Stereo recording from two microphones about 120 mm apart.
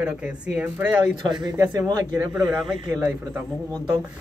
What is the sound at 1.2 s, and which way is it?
A man's voice, 35° right (ahead or behind).